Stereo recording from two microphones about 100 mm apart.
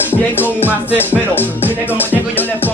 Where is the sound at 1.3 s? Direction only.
20° left (ahead or behind).